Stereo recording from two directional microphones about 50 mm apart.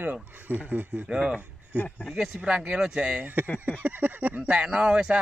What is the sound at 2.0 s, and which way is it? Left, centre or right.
Speech, centre.